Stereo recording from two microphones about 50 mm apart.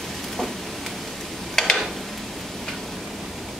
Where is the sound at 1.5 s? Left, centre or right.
Centre.